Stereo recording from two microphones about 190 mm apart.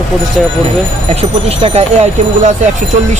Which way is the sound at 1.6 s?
30° right (ahead or behind).